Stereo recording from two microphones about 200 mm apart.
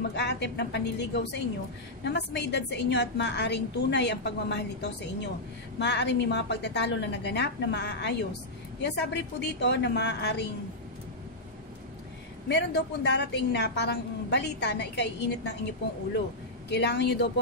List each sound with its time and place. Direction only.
0.1 s a woman's voice: 60° left (ahead or behind)
12.4 s a woman's voice: 60° left (ahead or behind)
16.6 s a woman's voice: 60° left (ahead or behind)